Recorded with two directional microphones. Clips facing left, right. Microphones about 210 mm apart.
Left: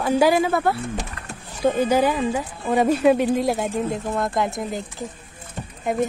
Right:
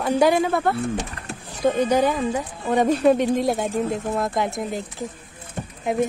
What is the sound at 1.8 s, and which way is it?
Speech, 10° left (ahead or behind).